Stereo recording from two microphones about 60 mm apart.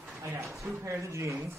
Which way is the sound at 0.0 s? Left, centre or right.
Right.